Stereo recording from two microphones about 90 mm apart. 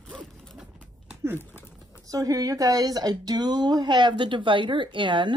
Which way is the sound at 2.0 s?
40° right (ahead or behind).